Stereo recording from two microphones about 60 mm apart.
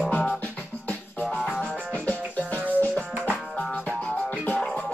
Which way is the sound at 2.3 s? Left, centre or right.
Left.